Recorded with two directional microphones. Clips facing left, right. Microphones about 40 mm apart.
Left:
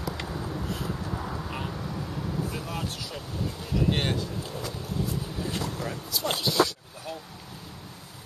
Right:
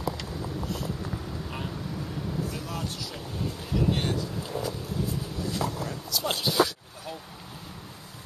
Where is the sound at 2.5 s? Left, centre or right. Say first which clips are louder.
Left 1 dB; centre.